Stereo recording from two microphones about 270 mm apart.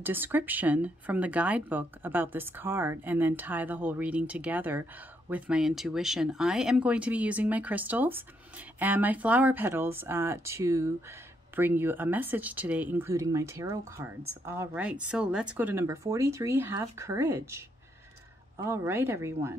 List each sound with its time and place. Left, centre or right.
0.0 s speech: centre